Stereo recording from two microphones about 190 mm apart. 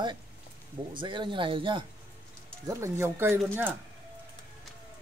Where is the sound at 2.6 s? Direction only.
15° right (ahead or behind).